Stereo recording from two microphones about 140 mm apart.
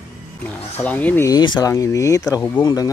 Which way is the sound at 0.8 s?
10° left (ahead or behind).